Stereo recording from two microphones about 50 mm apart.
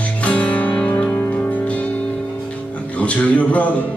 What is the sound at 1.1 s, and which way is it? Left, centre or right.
Music, left.